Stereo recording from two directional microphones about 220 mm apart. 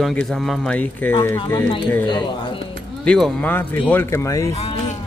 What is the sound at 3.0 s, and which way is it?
Speech, 5° left (ahead or behind).